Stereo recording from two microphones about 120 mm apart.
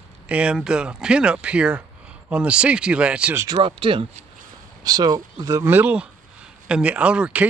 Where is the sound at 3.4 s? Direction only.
40° right (ahead or behind).